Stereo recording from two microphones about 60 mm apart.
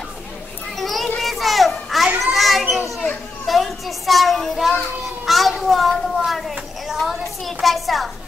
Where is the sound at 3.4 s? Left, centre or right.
Centre.